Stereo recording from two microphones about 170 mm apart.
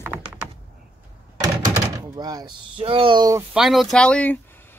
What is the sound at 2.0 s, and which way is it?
Speech, 20° right (ahead or behind).